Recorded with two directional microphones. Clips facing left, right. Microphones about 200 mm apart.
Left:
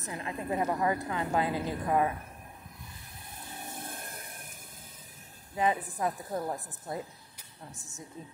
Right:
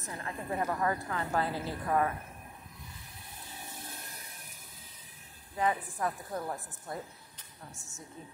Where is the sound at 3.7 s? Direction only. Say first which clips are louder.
Left 5 dB; 50° left (ahead or behind).